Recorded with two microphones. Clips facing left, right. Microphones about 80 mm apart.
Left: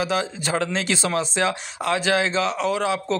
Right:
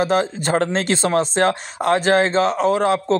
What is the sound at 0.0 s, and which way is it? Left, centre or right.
A man's voice, right.